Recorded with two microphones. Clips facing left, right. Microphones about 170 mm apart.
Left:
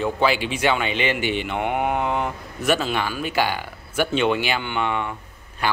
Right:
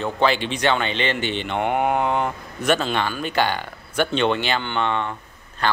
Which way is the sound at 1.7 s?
40° right (ahead or behind).